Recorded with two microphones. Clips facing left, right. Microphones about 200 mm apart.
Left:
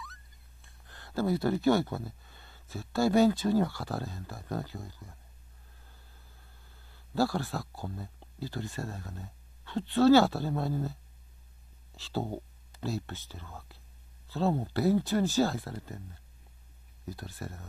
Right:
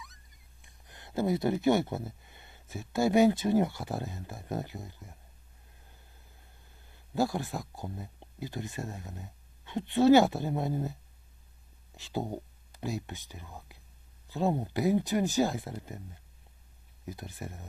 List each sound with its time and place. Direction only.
0.0 s speech: 20° right (ahead or behind)
6.9 s speech: 20° right (ahead or behind)